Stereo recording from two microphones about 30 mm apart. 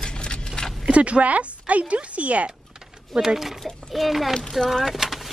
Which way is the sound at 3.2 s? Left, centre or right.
Centre.